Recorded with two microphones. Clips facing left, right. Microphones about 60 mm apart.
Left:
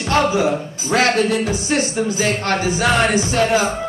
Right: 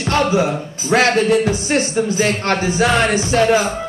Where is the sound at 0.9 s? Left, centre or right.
Right.